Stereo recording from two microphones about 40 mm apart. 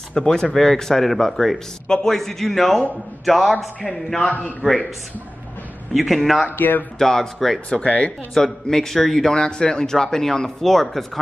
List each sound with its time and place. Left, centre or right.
0.1 s a man's voice: centre
4.3 s a man's voice: left
5.9 s speech: centre
6.5 s speech: left
7.0 s speech: centre
7.8 s a man's voice: left
8.4 s a man's voice: centre